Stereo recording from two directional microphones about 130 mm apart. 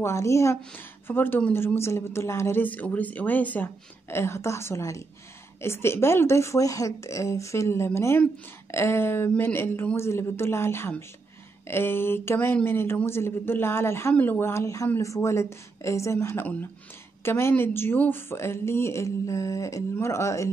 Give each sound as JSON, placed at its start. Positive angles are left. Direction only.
{"t": 0.0, "sound": "speech", "side_deg": 20}